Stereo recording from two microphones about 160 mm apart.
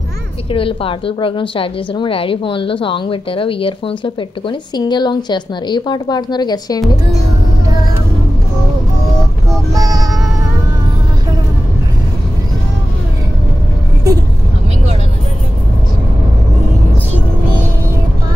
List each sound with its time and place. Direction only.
0.5 s a woman's voice: 35° left (ahead or behind)
9.8 s child singing: 25° right (ahead or behind)